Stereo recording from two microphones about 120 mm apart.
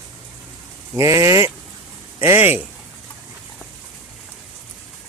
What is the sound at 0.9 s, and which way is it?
Speech, 25° right (ahead or behind).